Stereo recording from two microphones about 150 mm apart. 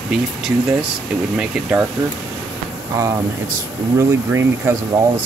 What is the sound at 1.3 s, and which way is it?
Speech, 5° right (ahead or behind).